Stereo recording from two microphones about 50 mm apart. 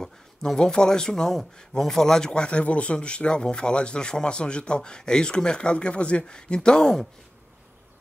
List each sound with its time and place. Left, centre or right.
0.0 s speech: centre